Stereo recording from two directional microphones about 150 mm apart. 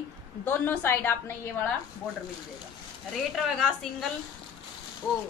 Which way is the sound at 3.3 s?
Centre (ahead or behind).